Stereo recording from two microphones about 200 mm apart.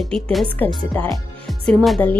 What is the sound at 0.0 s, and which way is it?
A woman's voice, centre (ahead or behind).